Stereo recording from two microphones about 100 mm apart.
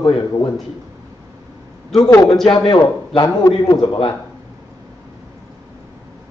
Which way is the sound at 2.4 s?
60° left (ahead or behind).